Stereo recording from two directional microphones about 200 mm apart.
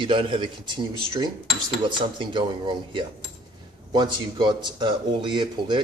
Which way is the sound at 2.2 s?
25° right (ahead or behind).